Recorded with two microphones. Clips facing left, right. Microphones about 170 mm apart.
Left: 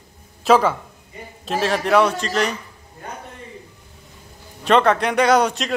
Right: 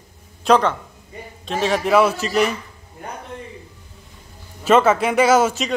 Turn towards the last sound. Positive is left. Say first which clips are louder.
# right 1 dB
turn(degrees=0)  # may be behind; listen again after turning